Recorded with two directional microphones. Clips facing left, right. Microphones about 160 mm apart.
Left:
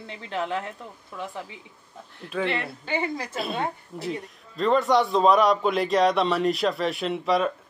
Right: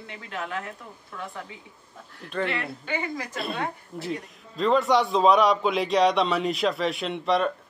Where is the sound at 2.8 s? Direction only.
30° left (ahead or behind).